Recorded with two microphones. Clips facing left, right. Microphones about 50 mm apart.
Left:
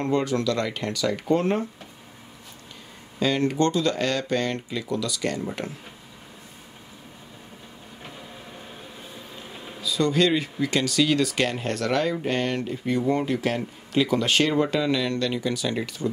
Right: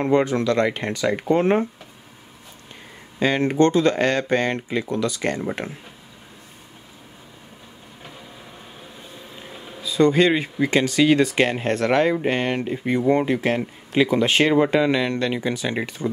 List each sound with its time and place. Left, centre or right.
0.0 s speech: right
3.2 s speech: right
9.3 s a sound: centre
9.8 s speech: right